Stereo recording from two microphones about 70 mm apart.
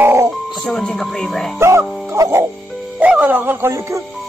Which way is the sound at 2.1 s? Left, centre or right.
Right.